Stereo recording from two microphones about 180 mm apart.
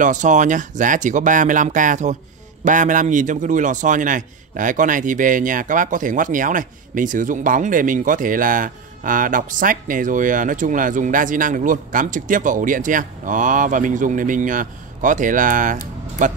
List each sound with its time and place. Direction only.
0.0 s a man's voice: 45° right (ahead or behind)